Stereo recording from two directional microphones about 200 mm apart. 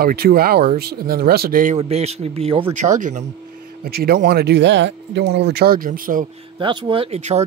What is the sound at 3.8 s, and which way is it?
Speech, 50° right (ahead or behind).